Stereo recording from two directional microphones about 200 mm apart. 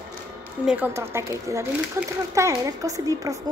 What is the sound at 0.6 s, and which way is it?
Speech, 5° right (ahead or behind).